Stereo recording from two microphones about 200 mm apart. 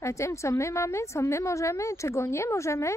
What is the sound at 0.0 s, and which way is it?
Speech, 15° left (ahead or behind).